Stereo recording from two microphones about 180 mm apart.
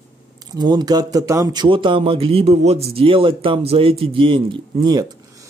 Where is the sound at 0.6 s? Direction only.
25° right (ahead or behind).